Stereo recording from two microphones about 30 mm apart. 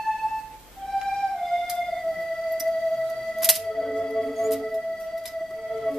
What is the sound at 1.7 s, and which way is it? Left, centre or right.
Music, centre.